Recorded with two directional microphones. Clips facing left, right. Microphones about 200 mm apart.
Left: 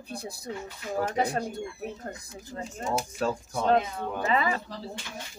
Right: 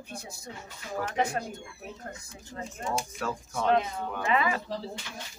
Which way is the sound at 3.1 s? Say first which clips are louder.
Left 4 dB; 30° left (ahead or behind).